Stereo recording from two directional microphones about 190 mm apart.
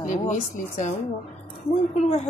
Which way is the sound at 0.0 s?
40° left (ahead or behind).